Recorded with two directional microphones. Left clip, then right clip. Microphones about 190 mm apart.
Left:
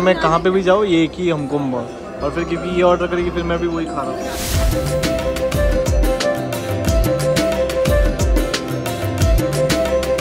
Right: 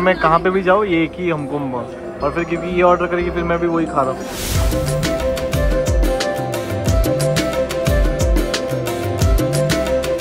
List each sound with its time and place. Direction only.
0.0 s a man's voice: 15° left (ahead or behind)